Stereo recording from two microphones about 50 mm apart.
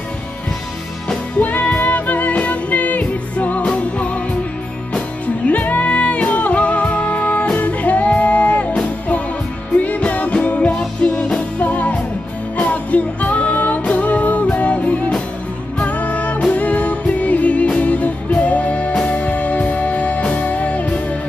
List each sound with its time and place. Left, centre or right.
1.4 s music: left
9.8 s music: left
10.7 s music: centre
11.3 s music: left